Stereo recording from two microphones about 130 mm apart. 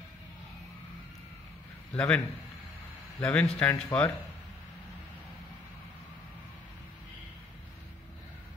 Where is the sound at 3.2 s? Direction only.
10° left (ahead or behind).